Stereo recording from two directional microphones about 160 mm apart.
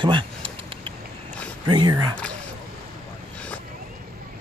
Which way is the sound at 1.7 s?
25° right (ahead or behind).